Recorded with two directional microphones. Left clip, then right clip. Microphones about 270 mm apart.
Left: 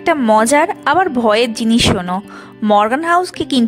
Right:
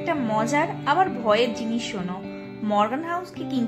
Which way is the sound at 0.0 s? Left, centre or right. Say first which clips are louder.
Left 12 dB; left.